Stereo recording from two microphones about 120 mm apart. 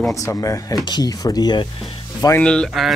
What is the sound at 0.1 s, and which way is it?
Speech, 25° left (ahead or behind).